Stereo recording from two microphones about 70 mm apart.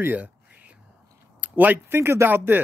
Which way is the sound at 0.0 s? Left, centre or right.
Right.